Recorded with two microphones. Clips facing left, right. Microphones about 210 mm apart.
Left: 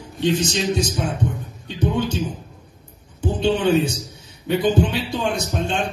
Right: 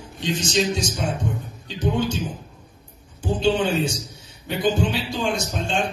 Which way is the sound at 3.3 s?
60° left (ahead or behind).